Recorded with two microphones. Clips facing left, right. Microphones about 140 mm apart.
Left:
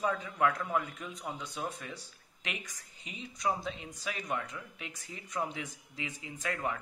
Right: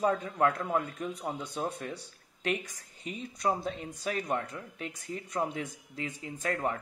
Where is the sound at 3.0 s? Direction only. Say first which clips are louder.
Right 5 dB; 50° right (ahead or behind).